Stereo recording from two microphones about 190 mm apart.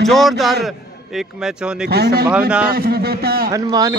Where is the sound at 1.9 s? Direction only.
55° right (ahead or behind).